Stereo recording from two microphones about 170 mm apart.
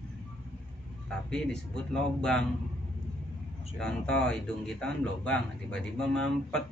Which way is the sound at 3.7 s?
5° left (ahead or behind).